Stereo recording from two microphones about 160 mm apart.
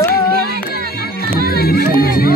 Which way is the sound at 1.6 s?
70° left (ahead or behind).